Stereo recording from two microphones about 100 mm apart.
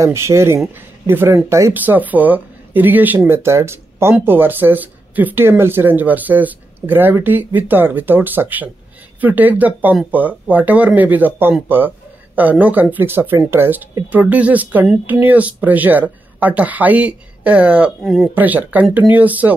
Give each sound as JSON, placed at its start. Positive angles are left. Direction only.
{"t": 0.0, "sound": "speech", "side_deg": -30}
{"t": 1.7, "sound": "speech", "side_deg": -20}
{"t": 18.0, "sound": "speech", "side_deg": 0}
{"t": 18.3, "sound": "speech", "side_deg": -20}